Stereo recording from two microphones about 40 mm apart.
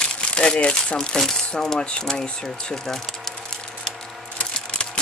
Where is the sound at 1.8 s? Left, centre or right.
Left.